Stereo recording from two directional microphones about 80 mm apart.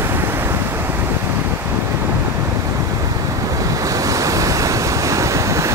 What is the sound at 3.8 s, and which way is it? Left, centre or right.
Waves, right.